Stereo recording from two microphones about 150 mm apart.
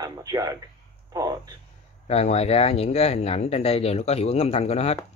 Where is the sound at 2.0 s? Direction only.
45° left (ahead or behind).